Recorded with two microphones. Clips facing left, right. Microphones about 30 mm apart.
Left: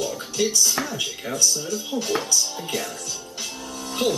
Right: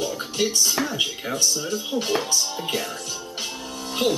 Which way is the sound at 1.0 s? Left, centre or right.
Centre.